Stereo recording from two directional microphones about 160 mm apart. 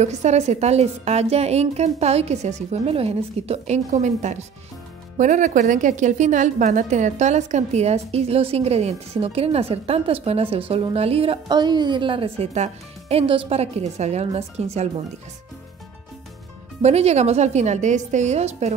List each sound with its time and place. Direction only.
0.0 s a woman's voice: 45° right (ahead or behind)
16.8 s a woman's voice: 40° right (ahead or behind)